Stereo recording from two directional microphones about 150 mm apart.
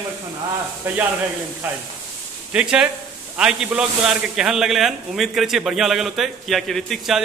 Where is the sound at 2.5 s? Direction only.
5° right (ahead or behind).